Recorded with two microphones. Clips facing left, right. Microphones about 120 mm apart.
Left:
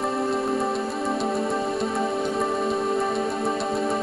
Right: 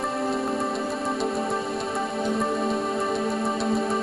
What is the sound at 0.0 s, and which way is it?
Music, centre (ahead or behind).